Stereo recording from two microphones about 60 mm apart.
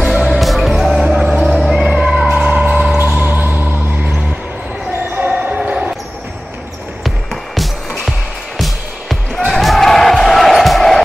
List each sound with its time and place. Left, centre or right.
0.1 s music: centre
2.2 s vehicle: centre
2.7 s a sound: centre
3.0 s basketball bounce: right
5.1 s basketball bounce: right
7.5 s music: centre